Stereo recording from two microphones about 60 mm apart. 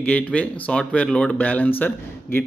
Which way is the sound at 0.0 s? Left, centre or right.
Left.